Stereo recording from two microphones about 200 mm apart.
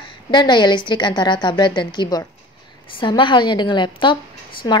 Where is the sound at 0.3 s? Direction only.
20° left (ahead or behind).